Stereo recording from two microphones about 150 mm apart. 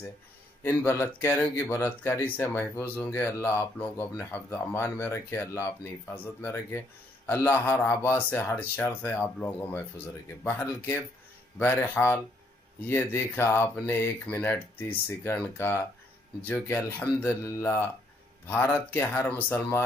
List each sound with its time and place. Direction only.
0.7 s speech: 15° left (ahead or behind)